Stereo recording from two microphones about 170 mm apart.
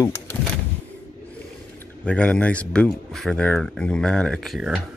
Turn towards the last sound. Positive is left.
turn(degrees=0)  # may be behind; listen again after turning